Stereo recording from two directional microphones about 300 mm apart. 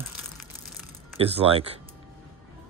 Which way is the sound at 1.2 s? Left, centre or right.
Centre.